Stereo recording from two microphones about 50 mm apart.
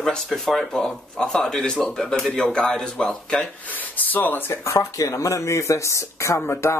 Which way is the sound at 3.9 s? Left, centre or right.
Left.